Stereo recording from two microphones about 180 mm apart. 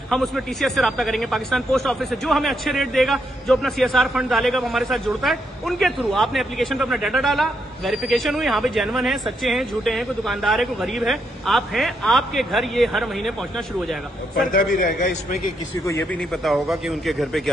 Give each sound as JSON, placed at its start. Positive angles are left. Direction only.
{"t": 0.1, "sound": "a man's voice", "side_deg": 0}
{"t": 14.5, "sound": "a man's voice", "side_deg": 50}
{"t": 15.9, "sound": "speech", "side_deg": 10}
{"t": 16.4, "sound": "a man's voice", "side_deg": 0}